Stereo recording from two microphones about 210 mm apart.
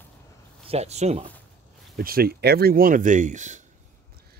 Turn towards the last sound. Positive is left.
turn(degrees=-35)  # may be behind; listen again after turning